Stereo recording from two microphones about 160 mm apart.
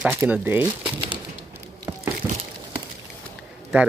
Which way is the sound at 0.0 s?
10° right (ahead or behind).